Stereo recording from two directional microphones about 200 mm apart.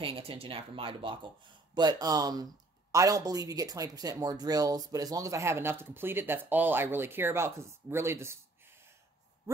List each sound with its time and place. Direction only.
0.0 s speech: 25° right (ahead or behind)